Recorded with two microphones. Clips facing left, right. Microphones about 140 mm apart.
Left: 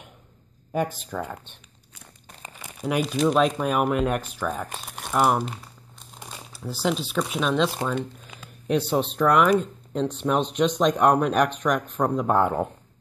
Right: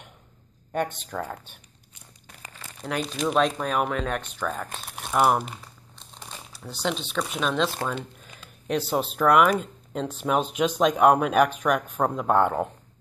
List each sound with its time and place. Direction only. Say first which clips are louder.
0.7 s speech: left 1 dB; 5° left (ahead or behind)
2.4 s crumpling: left 2 dB; 15° left (ahead or behind)
2.8 s speech: left 5 dB; 5° left (ahead or behind)